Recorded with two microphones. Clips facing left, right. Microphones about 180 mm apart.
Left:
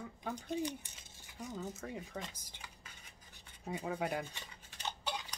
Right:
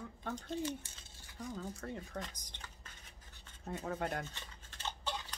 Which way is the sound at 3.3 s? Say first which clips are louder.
Left 1 dB; 15° left (ahead or behind).